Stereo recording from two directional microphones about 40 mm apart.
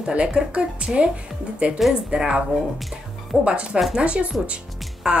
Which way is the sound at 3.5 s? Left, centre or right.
Right.